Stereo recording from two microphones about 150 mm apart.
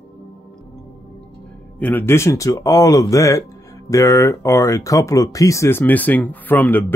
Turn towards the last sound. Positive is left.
turn(degrees=10)  # may be behind; listen again after turning